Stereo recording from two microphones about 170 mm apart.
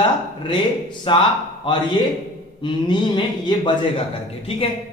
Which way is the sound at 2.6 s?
25° left (ahead or behind).